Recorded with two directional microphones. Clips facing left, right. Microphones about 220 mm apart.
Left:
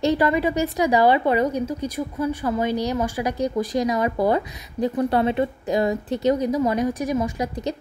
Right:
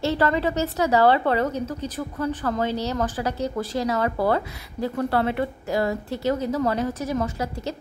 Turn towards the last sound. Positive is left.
turn(degrees=15)  # may be behind; listen again after turning